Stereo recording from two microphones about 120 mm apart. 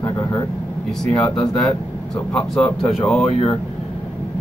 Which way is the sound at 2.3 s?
5° left (ahead or behind).